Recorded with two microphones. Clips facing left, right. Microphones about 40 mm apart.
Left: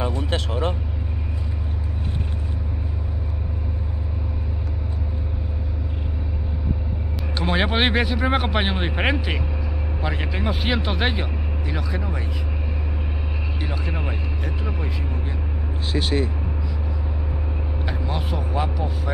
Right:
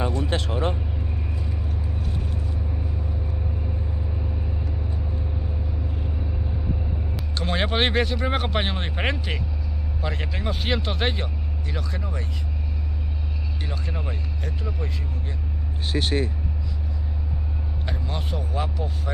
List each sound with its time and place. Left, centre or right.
7.3 s a man's voice: centre
13.6 s speech: centre
15.9 s speech: right
17.8 s speech: centre